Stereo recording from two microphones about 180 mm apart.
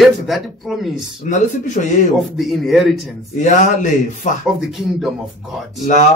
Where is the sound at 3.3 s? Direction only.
45° left (ahead or behind).